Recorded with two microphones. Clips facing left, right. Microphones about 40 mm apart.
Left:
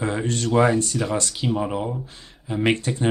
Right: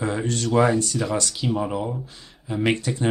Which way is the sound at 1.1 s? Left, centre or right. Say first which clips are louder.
Even; left.